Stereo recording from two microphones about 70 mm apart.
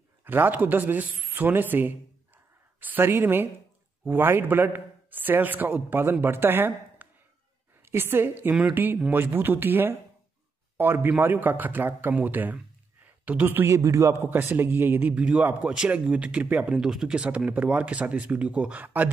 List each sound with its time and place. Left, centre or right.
0.2 s a man's voice: right
13.0 s a sound: right
13.5 s a man's voice: right
14.3 s a man's voice: right
16.7 s a man's voice: centre